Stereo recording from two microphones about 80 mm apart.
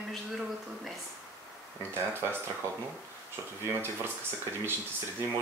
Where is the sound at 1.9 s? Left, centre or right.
Right.